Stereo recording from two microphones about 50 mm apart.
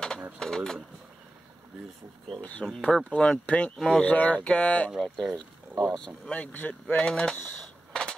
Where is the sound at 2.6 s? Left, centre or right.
Centre.